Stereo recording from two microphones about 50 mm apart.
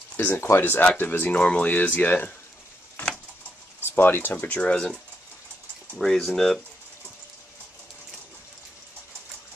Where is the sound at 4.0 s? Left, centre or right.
Left.